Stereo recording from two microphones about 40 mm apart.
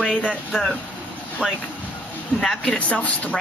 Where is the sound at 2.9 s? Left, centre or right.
Left.